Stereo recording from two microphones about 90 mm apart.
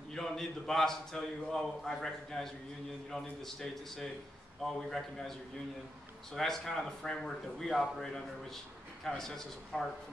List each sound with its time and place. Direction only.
0.1 s a man's voice: 5° left (ahead or behind)
6.3 s a man's voice: 5° left (ahead or behind)